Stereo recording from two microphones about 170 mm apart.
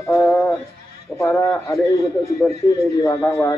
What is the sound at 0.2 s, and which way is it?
Music, 5° left (ahead or behind).